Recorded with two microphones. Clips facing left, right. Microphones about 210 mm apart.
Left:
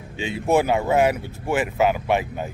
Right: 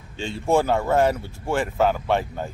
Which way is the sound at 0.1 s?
15° left (ahead or behind).